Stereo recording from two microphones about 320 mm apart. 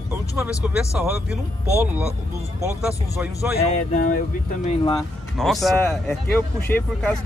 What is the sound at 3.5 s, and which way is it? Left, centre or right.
Speech, left.